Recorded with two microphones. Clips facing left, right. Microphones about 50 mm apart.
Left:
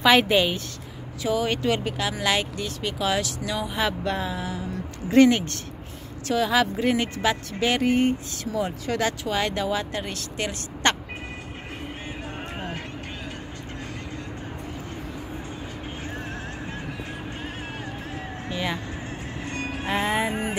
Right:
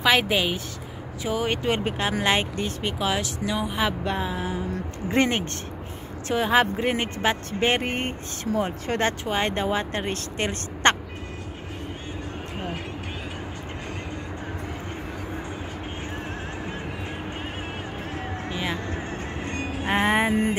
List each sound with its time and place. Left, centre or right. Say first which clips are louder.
0.0 s a woman's voice: left 3 dB; centre
1.2 s speech: left 1 dB; right
1.9 s speech: right 2 dB; right
3.0 s speech: left 2 dB; centre; by 11.0 s right
18.5 s music: left 2 dB; centre
19.9 s music: right 3 dB; right